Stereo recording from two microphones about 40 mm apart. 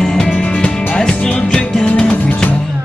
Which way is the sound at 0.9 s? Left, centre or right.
Centre.